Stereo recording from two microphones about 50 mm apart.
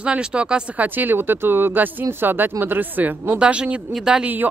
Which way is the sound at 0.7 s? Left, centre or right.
Right.